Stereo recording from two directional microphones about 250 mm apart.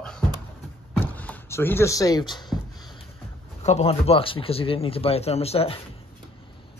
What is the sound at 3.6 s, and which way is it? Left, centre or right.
Speech, left.